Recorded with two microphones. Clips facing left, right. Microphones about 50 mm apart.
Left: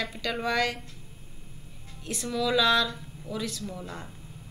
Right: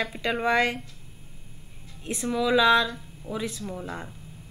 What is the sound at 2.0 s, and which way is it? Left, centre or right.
Speech, right.